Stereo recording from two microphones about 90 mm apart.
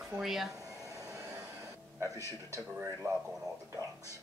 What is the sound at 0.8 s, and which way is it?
Train, 40° right (ahead or behind).